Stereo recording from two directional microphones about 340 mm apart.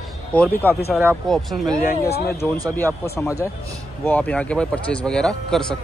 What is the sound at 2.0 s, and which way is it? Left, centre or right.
Speech, left.